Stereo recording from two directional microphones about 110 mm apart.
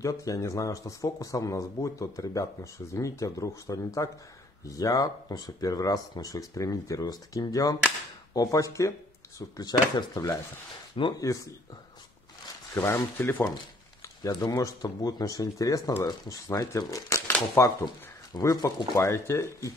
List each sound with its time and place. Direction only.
0.0 s a man's voice: 30° left (ahead or behind)
12.7 s speech: 25° left (ahead or behind)
14.0 s a man's voice: 35° left (ahead or behind)